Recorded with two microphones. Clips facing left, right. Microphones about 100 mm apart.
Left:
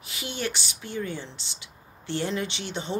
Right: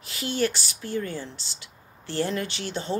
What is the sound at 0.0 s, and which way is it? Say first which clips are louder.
Speech: right 6 dB; 20° left (ahead or behind).